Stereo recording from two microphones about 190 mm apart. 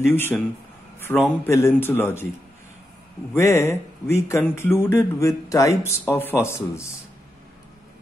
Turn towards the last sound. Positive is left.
turn(degrees=15)  # may be behind; listen again after turning